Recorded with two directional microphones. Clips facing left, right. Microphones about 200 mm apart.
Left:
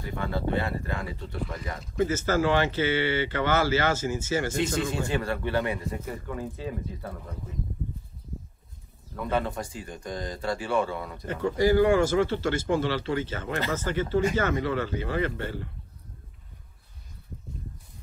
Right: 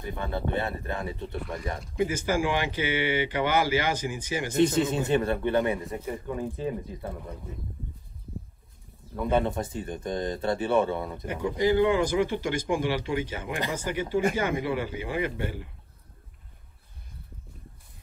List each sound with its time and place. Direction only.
0.0 s a man's voice: 20° right (ahead or behind)
9.3 s speech: 20° right (ahead or behind)